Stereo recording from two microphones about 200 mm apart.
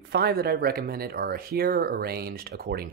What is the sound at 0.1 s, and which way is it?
Speech, 50° right (ahead or behind).